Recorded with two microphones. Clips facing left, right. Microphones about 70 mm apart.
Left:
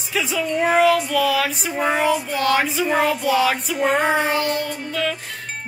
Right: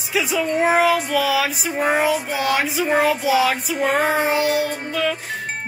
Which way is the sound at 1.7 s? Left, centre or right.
Right.